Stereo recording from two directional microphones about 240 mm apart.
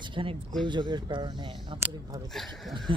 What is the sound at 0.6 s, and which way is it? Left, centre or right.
Speech, centre.